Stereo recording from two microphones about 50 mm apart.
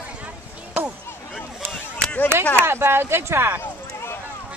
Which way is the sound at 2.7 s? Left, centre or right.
Right.